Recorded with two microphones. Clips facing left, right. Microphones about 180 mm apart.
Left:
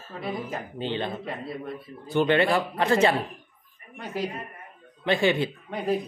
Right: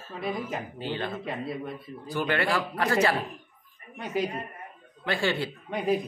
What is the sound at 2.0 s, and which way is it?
Speech, 25° left (ahead or behind).